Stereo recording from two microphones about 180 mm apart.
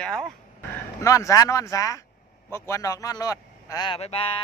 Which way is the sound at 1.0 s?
20° left (ahead or behind).